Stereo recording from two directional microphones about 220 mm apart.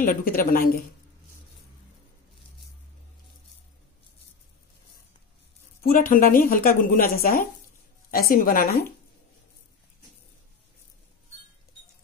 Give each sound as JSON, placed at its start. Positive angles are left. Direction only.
{"t": 0.0, "sound": "a woman's voice", "side_deg": 40}
{"t": 5.8, "sound": "a woman's voice", "side_deg": 40}